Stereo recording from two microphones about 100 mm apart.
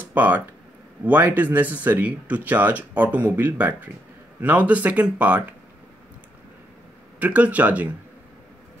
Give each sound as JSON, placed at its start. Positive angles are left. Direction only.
{"t": 0.1, "sound": "speech", "side_deg": -15}
{"t": 7.2, "sound": "speech", "side_deg": -15}